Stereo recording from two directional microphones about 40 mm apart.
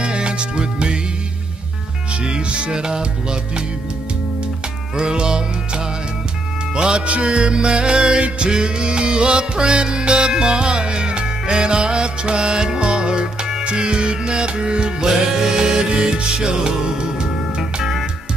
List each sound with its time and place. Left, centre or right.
0.0 s music: right
2.2 s music: right
4.9 s music: right
17.6 s music: centre